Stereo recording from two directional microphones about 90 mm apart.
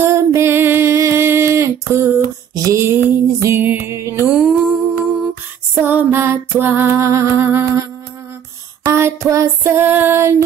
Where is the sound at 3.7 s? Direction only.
30° right (ahead or behind).